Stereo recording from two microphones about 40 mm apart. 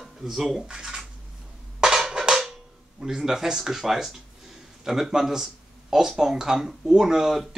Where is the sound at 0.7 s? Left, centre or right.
Centre.